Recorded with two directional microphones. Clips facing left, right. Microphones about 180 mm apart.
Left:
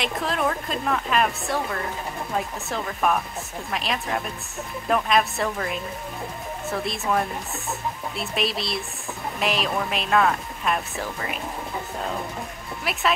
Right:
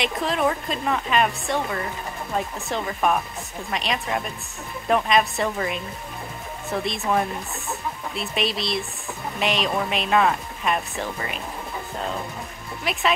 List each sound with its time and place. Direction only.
0.0 s speech: centre (ahead or behind)
12.9 s speech: 5° left (ahead or behind)